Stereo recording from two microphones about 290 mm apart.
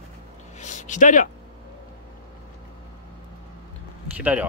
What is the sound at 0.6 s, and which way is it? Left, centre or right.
Speech, left.